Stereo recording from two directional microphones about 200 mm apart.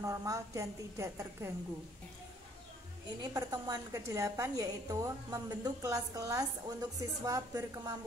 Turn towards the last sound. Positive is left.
turn(degrees=-15)  # may be behind; listen again after turning